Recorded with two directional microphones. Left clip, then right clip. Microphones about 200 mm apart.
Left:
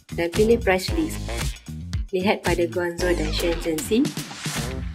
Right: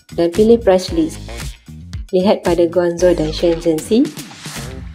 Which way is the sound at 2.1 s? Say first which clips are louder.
Right 9 dB; 20° right (ahead or behind).